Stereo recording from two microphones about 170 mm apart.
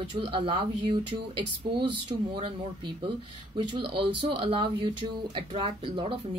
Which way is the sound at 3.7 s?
30° right (ahead or behind).